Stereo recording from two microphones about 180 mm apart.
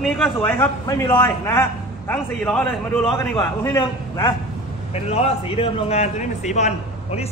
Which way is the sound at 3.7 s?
25° left (ahead or behind).